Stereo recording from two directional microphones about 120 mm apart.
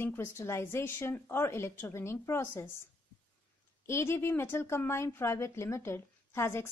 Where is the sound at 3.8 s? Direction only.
20° left (ahead or behind).